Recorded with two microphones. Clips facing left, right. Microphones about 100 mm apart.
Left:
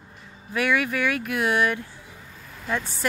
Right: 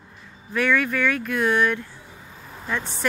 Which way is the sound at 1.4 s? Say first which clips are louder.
Right 2 dB; 10° left (ahead or behind).